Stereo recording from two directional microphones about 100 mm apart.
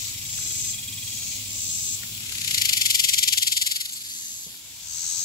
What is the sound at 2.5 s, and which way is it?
Snake, 40° left (ahead or behind).